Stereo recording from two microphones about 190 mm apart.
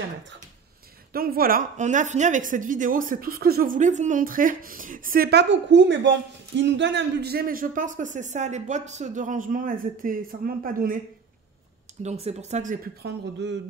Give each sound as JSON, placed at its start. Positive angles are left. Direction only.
{"t": 1.1, "sound": "a woman's voice", "side_deg": -50}
{"t": 12.0, "sound": "speech", "side_deg": -35}
{"t": 13.0, "sound": "speech", "side_deg": -65}